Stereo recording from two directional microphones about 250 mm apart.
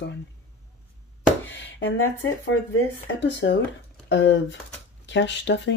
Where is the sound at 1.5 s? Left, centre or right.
Left.